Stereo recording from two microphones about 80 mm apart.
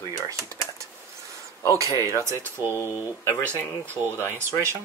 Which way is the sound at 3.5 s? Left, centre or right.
Right.